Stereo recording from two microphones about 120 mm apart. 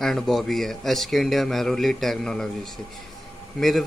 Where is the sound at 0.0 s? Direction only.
Centre (ahead or behind).